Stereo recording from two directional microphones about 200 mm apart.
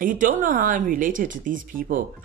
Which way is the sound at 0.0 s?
40° right (ahead or behind).